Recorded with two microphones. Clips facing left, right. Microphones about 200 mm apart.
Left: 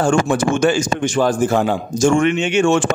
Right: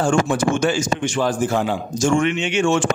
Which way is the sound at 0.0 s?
55° left (ahead or behind).